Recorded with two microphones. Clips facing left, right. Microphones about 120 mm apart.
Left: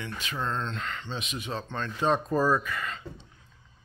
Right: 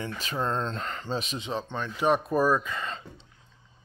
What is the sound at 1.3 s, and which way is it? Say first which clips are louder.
Speech: right 2 dB; 20° right (ahead or behind).